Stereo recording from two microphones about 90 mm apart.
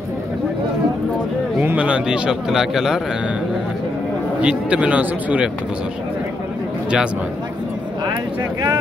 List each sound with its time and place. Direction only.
1.8 s speech: 10° right (ahead or behind)
4.4 s speech: 10° right (ahead or behind)
8.0 s a sound: 50° right (ahead or behind)